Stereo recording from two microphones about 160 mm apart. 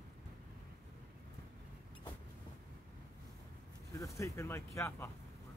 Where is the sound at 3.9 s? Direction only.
20° left (ahead or behind).